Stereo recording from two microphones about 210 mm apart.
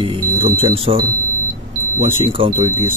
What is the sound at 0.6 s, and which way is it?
Speech, 25° right (ahead or behind).